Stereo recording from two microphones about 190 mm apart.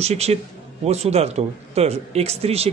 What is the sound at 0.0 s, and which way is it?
Speech, 35° right (ahead or behind).